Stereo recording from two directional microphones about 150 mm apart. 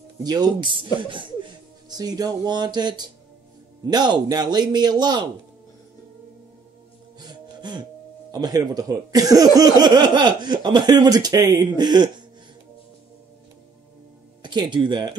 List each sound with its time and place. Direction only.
0.2 s speech: 25° right (ahead or behind)
7.2 s music: 30° right (ahead or behind)
8.3 s speech: 25° right (ahead or behind)
14.4 s speech: 30° right (ahead or behind)